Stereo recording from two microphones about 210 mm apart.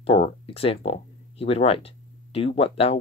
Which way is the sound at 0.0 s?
30° left (ahead or behind).